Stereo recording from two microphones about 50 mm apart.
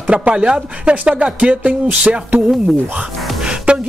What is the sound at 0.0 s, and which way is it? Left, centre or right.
Speech, right.